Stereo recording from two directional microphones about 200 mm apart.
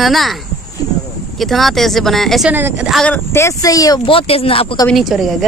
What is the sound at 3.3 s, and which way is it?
Speech, 15° left (ahead or behind).